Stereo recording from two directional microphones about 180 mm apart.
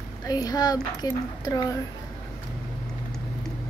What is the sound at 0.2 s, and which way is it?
Speech, 20° left (ahead or behind).